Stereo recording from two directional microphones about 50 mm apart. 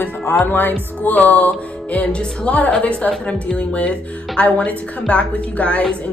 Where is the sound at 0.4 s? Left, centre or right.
Left.